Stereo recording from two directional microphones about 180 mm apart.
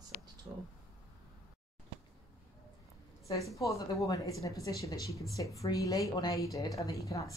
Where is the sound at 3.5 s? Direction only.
20° left (ahead or behind).